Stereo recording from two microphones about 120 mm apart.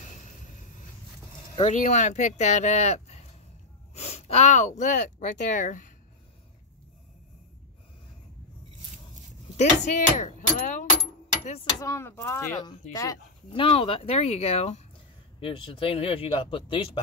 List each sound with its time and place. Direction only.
1.6 s speech: 85° left
9.6 s speech: 85° left
11.8 s speech: 20° left (ahead or behind)
13.5 s speech: 50° left (ahead or behind)
15.4 s speech: 50° left (ahead or behind)